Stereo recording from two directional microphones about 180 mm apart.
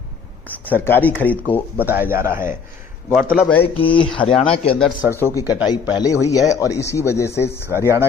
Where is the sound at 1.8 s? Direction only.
10° right (ahead or behind).